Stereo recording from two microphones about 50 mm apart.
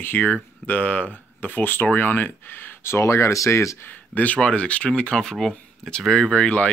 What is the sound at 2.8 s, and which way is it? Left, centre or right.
Speech, left.